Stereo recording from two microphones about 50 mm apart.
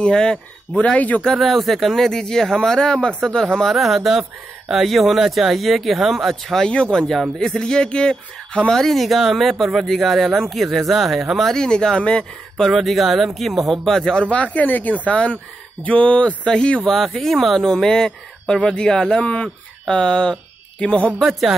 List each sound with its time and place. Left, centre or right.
0.0 s speech: centre
1.3 s speech: centre
3.5 s speech: centre
6.7 s speech: centre
8.7 s speech: centre
11.5 s speech: centre
12.6 s speech: centre
14.3 s speech: left
16.8 s speech: centre
19.2 s speech: left
21.2 s speech: centre